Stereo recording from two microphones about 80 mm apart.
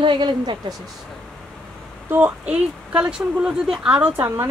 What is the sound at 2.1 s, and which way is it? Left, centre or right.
Speech, right.